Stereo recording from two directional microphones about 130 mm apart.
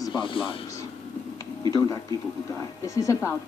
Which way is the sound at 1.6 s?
25° left (ahead or behind).